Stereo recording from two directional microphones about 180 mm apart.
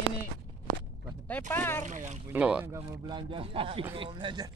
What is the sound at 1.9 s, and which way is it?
Speech, 40° right (ahead or behind).